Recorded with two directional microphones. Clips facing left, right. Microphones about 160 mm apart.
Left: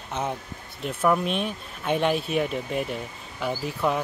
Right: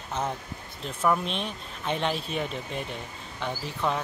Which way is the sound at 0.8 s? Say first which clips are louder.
Left 3 dB; 5° left (ahead or behind).